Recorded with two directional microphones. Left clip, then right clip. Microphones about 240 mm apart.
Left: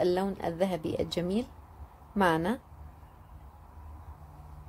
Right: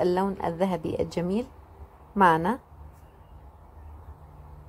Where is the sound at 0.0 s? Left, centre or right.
Centre.